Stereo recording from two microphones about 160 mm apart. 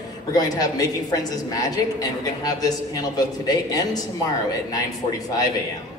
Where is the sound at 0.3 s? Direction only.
25° left (ahead or behind).